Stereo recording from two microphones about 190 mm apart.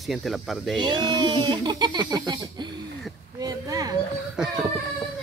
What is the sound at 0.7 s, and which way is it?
Speech, 20° right (ahead or behind).